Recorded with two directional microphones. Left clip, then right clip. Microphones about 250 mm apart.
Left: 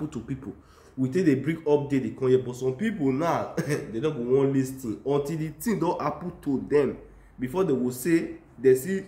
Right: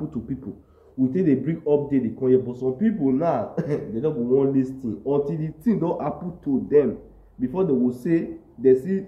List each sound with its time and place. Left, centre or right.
1.1 s a man's voice: centre